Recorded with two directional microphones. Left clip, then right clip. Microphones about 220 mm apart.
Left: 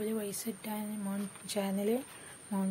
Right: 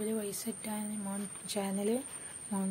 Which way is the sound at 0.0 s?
5° left (ahead or behind).